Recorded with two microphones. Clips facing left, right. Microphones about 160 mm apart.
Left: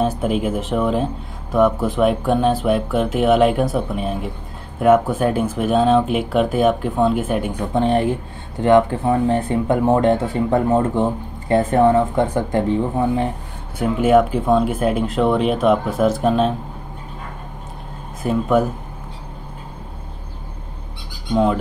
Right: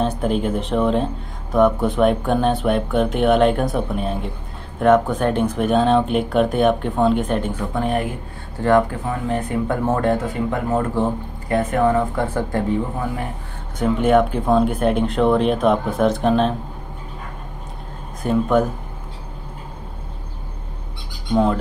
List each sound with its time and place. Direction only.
0.0 s speech: 5° left (ahead or behind)
7.7 s speech: 30° left (ahead or behind)
12.4 s speech: 20° left (ahead or behind)
13.7 s speech: 5° left (ahead or behind)
18.2 s speech: 5° left (ahead or behind)